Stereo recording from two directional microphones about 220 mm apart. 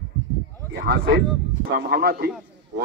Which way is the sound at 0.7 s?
45° right (ahead or behind).